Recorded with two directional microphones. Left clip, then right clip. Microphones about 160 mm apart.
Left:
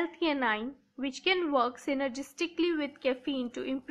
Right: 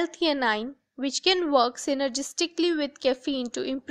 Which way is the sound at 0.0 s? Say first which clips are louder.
Right 5 dB; 40° right (ahead or behind).